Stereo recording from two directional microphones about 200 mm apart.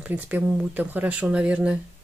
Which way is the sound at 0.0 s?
5° right (ahead or behind).